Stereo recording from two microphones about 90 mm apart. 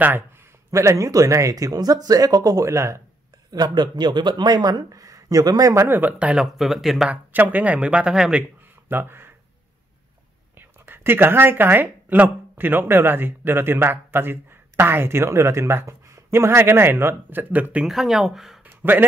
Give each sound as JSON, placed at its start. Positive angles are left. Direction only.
{"t": 0.7, "sound": "speech", "side_deg": -35}
{"t": 3.5, "sound": "speech", "side_deg": -50}
{"t": 4.8, "sound": "speech", "side_deg": -40}
{"t": 5.9, "sound": "speech", "side_deg": -20}
{"t": 6.4, "sound": "speech", "side_deg": -5}
{"t": 7.1, "sound": "speech", "side_deg": -20}
{"t": 8.8, "sound": "speech", "side_deg": -25}
{"t": 10.6, "sound": "speech", "side_deg": -25}
{"t": 17.8, "sound": "speech", "side_deg": -5}
{"t": 18.6, "sound": "a sound", "side_deg": -20}